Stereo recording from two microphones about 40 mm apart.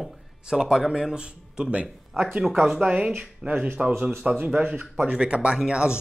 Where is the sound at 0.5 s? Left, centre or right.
Centre; by 3.8 s right.